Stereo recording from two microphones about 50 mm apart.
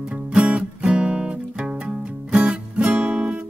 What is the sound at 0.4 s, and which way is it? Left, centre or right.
Music, right.